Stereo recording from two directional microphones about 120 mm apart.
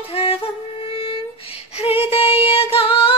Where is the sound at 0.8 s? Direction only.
45° left (ahead or behind).